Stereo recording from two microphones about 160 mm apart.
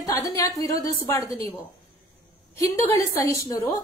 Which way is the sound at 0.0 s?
20° left (ahead or behind).